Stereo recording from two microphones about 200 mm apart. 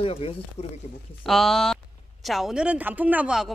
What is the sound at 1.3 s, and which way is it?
Speech, centre (ahead or behind).